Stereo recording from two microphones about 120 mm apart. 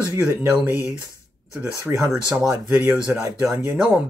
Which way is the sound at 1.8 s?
15° right (ahead or behind).